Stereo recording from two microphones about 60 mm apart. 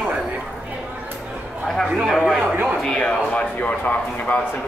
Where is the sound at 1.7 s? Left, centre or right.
Centre.